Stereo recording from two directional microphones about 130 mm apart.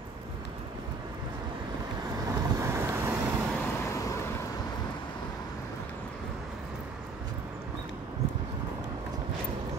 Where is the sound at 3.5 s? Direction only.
20° left (ahead or behind).